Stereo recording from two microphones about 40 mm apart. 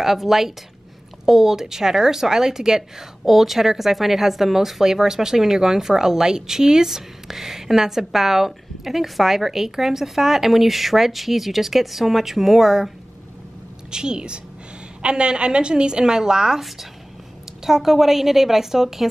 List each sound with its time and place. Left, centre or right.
0.0 s a woman's voice: centre
13.8 s a woman's voice: centre
17.6 s speech: centre